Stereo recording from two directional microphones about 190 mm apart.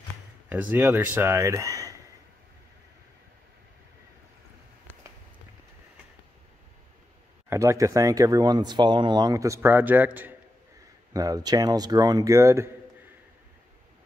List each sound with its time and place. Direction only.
0.5 s speech: 10° right (ahead or behind)
7.4 s a man's voice: 15° right (ahead or behind)